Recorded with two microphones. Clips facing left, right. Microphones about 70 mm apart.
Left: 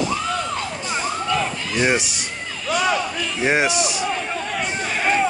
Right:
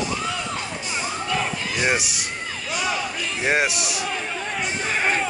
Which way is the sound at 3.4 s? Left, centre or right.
Centre.